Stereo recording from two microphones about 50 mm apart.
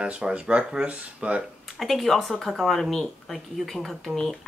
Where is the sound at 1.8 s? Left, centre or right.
Centre.